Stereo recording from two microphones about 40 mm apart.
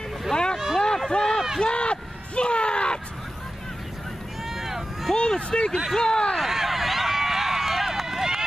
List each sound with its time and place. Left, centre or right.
0.3 s boat: centre
0.7 s a sound: centre
1.1 s run: left
1.6 s a sound: left
4.6 s run: centre
5.1 s vehicle: centre
5.9 s speech: centre
6.3 s run: centre